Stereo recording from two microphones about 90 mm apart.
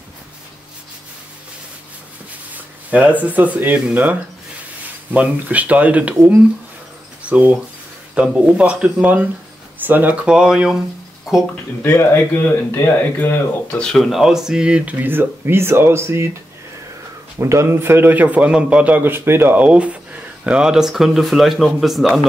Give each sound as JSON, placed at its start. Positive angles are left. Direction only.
{"t": 2.5, "sound": "a man's voice", "side_deg": -15}
{"t": 11.8, "sound": "speech", "side_deg": 25}
{"t": 13.7, "sound": "a man's voice", "side_deg": 5}
{"t": 17.4, "sound": "a man's voice", "side_deg": -30}